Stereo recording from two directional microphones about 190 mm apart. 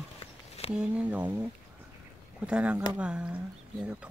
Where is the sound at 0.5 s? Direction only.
30° left (ahead or behind).